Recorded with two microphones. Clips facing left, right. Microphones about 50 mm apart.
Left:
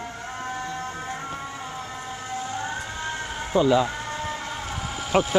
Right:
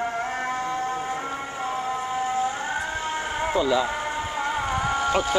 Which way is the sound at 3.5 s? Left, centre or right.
Centre.